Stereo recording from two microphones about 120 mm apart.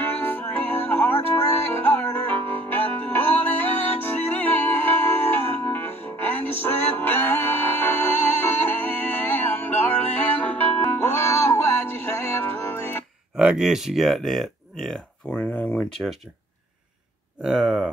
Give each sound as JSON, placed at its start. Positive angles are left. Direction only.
{"t": 0.0, "sound": "music", "side_deg": 15}
{"t": 13.4, "sound": "speech", "side_deg": -5}
{"t": 17.4, "sound": "speech", "side_deg": 0}